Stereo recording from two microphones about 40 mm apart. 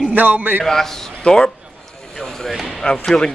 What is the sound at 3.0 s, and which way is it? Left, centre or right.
Speech, centre.